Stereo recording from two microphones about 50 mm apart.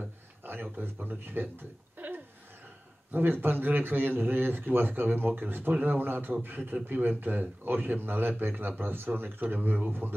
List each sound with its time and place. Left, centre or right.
0.5 s a man's voice: right